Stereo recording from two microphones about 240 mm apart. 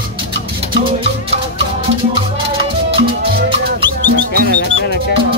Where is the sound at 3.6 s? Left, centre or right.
Right.